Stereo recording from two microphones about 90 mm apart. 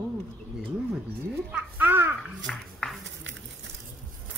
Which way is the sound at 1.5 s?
10° right (ahead or behind).